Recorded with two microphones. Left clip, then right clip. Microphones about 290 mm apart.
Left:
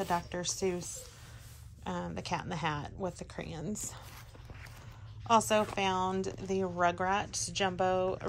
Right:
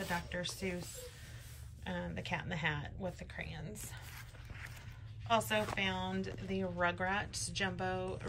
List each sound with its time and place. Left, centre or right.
0.3 s speech: centre
1.9 s speech: centre
5.3 s speech: centre